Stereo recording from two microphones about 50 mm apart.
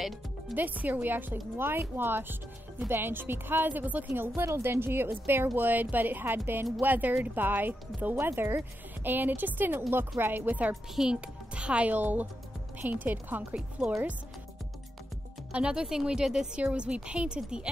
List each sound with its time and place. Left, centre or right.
0.0 s music: centre
0.6 s a woman's voice: right
4.6 s a woman's voice: right
8.3 s speech: right
9.8 s a woman's voice: right
11.1 s speech: right
11.9 s speech: right
13.6 s speech: right
15.5 s a woman's voice: centre